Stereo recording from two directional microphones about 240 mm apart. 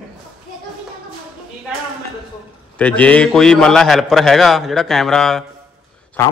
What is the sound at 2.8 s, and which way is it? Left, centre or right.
A man's voice, centre.